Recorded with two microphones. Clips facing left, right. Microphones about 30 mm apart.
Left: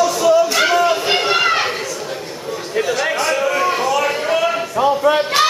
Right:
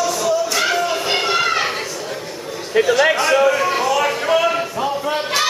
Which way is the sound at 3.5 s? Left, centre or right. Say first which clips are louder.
Even; centre.